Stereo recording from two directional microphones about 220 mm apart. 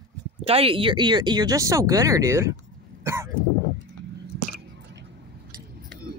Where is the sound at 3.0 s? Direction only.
10° right (ahead or behind).